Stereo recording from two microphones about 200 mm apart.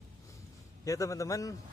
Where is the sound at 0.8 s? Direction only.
15° left (ahead or behind).